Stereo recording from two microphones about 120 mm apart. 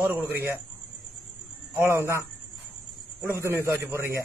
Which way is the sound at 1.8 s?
20° right (ahead or behind).